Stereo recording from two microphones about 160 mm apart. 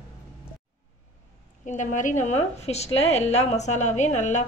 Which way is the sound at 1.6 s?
50° left (ahead or behind).